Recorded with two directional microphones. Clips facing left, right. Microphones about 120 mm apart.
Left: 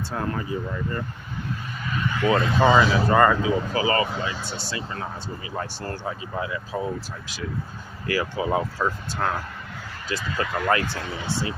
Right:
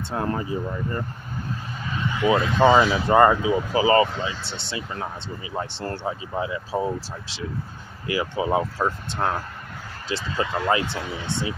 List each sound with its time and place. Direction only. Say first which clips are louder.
0.1 s speech: right 3 dB; 25° right (ahead or behind)
8.1 s speech: right 1 dB; 20° right (ahead or behind)